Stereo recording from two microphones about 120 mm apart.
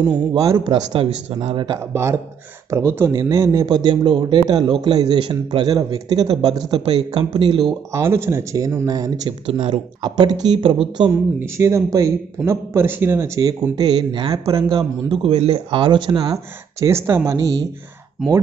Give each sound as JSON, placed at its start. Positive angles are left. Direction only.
{"t": 0.3, "sound": "speech", "side_deg": -35}
{"t": 0.9, "sound": "speech", "side_deg": -50}
{"t": 2.7, "sound": "speech", "side_deg": -20}
{"t": 6.7, "sound": "speech", "side_deg": -55}
{"t": 7.9, "sound": "speech", "side_deg": -20}
{"t": 9.5, "sound": "speech", "side_deg": -55}
{"t": 10.0, "sound": "speech", "side_deg": -35}
{"t": 11.1, "sound": "speech", "side_deg": -25}
{"t": 15.2, "sound": "speech", "side_deg": -55}
{"t": 16.8, "sound": "speech", "side_deg": -20}